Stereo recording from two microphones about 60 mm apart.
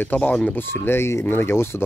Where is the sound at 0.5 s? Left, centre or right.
Left.